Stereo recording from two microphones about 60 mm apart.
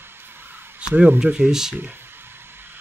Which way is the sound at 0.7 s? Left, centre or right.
Centre.